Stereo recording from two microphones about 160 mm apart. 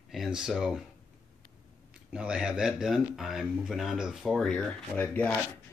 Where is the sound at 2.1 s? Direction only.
5° right (ahead or behind).